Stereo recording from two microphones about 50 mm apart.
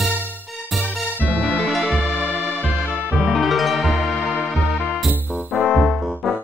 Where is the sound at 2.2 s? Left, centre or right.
Centre.